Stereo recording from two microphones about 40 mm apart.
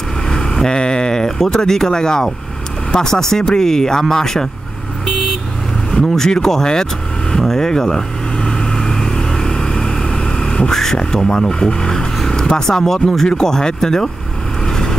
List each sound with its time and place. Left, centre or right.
0.3 s speech: centre
6.1 s speech: centre
8.5 s vehicle: centre
10.7 s speech: centre
14.7 s vehicle: centre